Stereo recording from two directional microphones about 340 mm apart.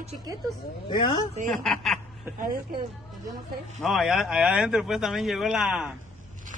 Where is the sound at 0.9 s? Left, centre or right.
Centre.